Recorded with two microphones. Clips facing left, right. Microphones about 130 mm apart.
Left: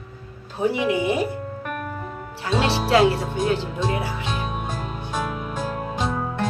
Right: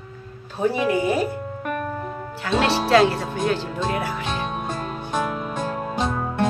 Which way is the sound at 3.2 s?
5° left (ahead or behind).